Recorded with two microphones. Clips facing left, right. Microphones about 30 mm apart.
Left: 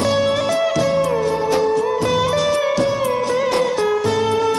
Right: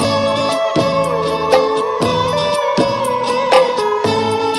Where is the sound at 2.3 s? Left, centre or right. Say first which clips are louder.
Right 2 dB; right.